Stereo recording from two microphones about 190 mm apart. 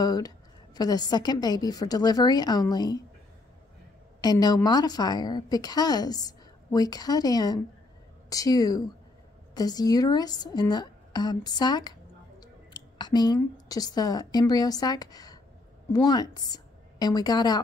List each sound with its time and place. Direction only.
0.0 s a woman's voice: 20° left (ahead or behind)
4.2 s a woman's voice: 20° left (ahead or behind)